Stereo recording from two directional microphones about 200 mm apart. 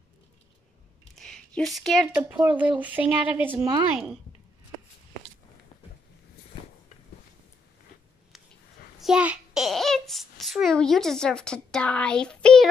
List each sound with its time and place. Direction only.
1.1 s speech: 5° left (ahead or behind); by 3.8 s 15° right (ahead or behind)
9.0 s babbling: 5° right (ahead or behind)